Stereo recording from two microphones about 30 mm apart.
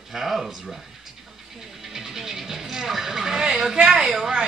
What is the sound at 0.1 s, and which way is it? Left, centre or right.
Speech, centre.